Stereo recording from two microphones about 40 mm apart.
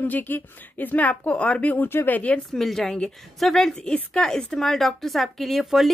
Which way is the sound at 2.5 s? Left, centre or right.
Centre.